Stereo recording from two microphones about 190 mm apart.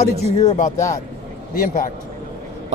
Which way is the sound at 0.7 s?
15° left (ahead or behind).